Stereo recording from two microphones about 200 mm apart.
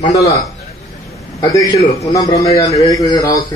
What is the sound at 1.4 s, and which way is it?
Speech, 15° left (ahead or behind).